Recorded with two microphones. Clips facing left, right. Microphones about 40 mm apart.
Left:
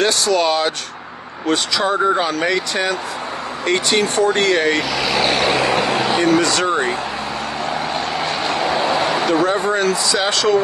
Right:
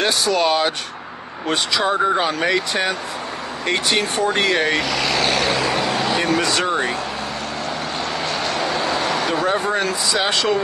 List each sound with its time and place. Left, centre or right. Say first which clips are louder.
0.0 s speech: left 2 dB; centre
5.4 s vehicle: left 3 dB; left
6.2 s speech: left 3 dB; centre
8.2 s vehicle: left 1 dB; left
8.9 s a sound: left 3 dB; left
9.3 s speech: left 3 dB; centre